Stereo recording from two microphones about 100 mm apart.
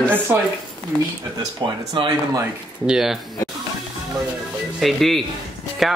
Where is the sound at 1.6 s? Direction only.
50° right (ahead or behind).